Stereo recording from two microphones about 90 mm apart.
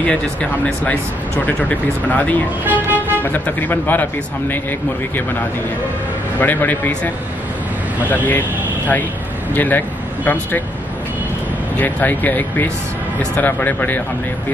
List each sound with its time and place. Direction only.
0.0 s speech: 10° left (ahead or behind)
2.6 s speech: 20° right (ahead or behind)
3.2 s speech: 20° left (ahead or behind)
6.4 s speech: 20° left (ahead or behind)
8.3 s speech: 20° left (ahead or behind)
11.8 s speech: 20° left (ahead or behind)